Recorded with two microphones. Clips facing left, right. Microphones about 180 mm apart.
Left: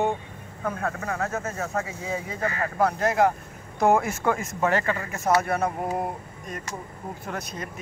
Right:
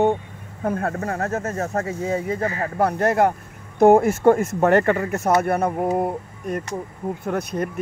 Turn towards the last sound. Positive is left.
turn(degrees=-60)  # may be behind; listen again after turning